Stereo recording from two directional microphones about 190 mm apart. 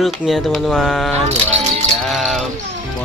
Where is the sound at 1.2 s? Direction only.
35° right (ahead or behind).